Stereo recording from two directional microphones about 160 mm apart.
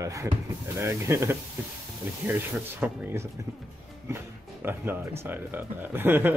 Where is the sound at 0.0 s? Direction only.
20° right (ahead or behind).